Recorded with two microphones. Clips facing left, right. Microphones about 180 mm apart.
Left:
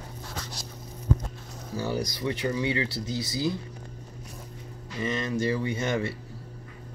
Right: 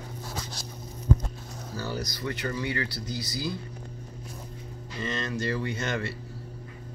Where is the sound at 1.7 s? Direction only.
20° left (ahead or behind).